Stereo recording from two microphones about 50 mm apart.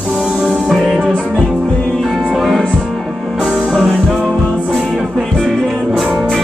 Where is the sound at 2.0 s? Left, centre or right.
Centre.